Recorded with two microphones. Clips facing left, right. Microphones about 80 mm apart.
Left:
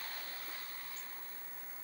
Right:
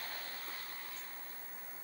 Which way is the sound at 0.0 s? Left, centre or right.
Right.